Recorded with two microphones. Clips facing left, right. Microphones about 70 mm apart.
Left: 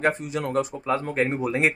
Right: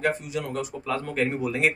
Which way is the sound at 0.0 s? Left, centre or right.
Left.